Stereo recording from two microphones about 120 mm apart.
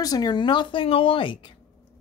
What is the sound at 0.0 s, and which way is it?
Speech, 35° left (ahead or behind).